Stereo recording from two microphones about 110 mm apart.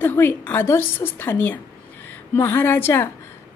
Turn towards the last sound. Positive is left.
turn(degrees=20)  # may be behind; listen again after turning